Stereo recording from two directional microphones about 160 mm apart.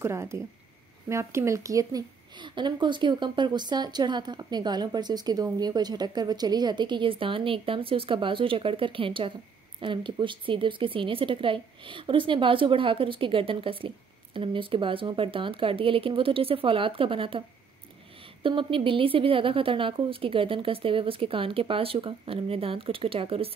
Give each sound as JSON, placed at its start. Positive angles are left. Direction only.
{"t": 0.0, "sound": "a woman's voice", "side_deg": -15}
{"t": 18.4, "sound": "a woman's voice", "side_deg": -30}